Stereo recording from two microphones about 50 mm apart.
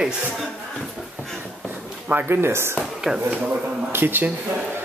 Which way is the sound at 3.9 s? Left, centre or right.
Right.